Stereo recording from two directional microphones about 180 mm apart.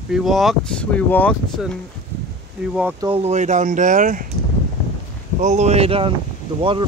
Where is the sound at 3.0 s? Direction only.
30° right (ahead or behind).